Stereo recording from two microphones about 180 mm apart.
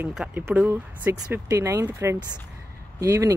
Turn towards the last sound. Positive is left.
turn(degrees=-15)  # may be behind; listen again after turning